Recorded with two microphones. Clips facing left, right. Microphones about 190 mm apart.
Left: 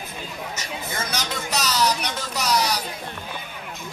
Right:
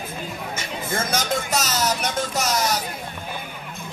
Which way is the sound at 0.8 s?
50° right (ahead or behind).